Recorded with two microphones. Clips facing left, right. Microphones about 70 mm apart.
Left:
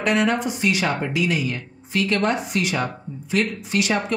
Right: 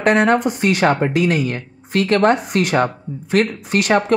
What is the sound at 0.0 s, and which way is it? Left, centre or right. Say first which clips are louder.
Speech: right 6 dB; right.